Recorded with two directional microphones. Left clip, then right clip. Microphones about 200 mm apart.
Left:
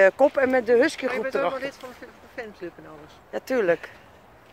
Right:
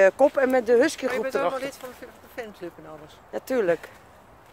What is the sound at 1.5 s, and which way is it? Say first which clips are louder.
Speech: even; 50° right (ahead or behind).